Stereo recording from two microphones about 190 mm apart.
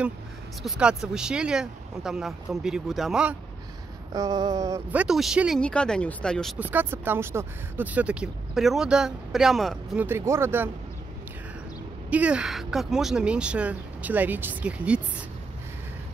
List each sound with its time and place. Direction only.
0.6 s speech: 5° right (ahead or behind)
4.1 s speech: 20° right (ahead or behind)
5.0 s speech: centre (ahead or behind)
6.7 s speech: 10° right (ahead or behind)
10.0 s speech: 15° right (ahead or behind)
12.1 s speech: 5° right (ahead or behind)